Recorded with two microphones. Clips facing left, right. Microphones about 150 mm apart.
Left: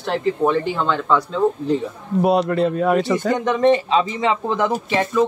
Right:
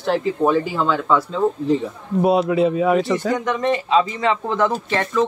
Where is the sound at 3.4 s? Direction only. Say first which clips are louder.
Left 5 dB; 25° left (ahead or behind).